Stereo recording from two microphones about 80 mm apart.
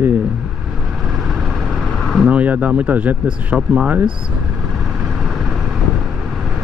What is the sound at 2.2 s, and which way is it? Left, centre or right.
Speech, centre.